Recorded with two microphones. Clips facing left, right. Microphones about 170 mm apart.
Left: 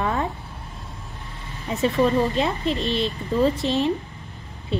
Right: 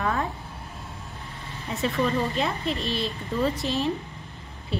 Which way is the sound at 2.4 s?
20° left (ahead or behind).